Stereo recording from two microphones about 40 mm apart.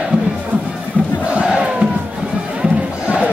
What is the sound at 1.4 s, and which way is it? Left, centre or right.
Battle cry, right.